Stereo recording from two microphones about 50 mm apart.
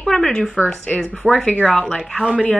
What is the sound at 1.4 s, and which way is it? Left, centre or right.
Speech, left.